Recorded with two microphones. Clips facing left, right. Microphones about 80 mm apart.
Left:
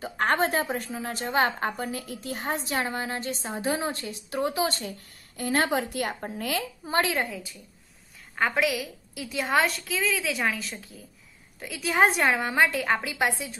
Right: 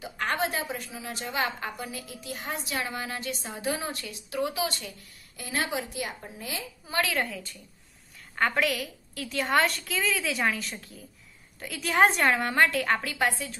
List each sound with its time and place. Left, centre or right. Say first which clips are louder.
0.0 s a woman's voice: left 5 dB; left
6.8 s a woman's voice: left 2 dB; left
7.2 s a woman's voice: left 1 dB; centre